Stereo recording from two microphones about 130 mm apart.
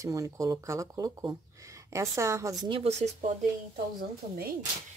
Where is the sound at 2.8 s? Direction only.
60° right (ahead or behind).